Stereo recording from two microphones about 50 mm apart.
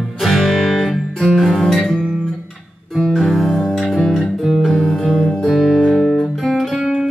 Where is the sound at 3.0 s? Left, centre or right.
Centre.